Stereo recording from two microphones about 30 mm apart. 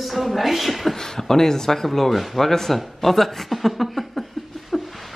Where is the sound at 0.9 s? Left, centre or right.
Centre.